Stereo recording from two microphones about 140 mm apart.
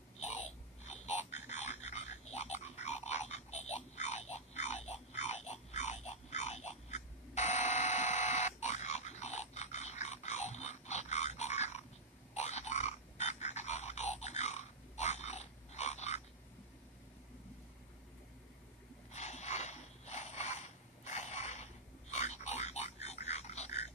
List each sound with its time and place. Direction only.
0.8 s frog: 55° left (ahead or behind)
12.4 s grunt: 50° left (ahead or behind)
19.1 s a sound: 55° left (ahead or behind)